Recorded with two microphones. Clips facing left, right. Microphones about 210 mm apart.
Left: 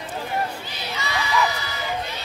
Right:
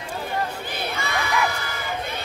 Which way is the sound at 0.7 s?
55° right (ahead or behind).